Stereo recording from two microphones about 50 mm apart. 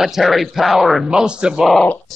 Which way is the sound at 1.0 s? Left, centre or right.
Centre.